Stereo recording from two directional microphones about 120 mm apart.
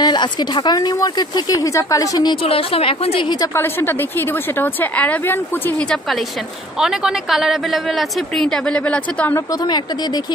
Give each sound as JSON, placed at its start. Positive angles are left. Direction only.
{"t": 0.0, "sound": "speech", "side_deg": 40}
{"t": 2.4, "sound": "a woman's voice", "side_deg": 50}
{"t": 3.3, "sound": "a woman's voice", "side_deg": 20}
{"t": 6.8, "sound": "a woman's voice", "side_deg": -5}